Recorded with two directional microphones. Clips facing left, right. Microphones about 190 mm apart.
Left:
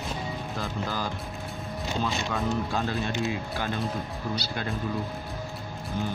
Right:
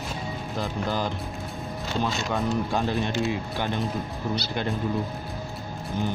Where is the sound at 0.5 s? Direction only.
20° right (ahead or behind).